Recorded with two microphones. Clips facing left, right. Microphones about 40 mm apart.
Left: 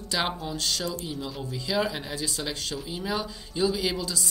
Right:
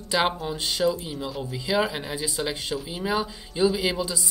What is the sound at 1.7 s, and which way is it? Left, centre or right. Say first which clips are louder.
Speech: right 3 dB; centre.